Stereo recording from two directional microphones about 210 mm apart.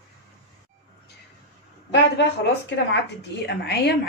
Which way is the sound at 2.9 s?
55° left (ahead or behind).